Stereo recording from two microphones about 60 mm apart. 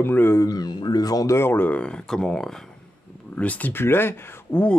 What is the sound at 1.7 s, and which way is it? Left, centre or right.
Speech, left.